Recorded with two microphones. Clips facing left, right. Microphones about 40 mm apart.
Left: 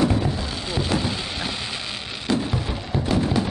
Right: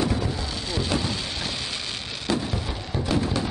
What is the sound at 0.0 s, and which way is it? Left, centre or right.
Music, centre.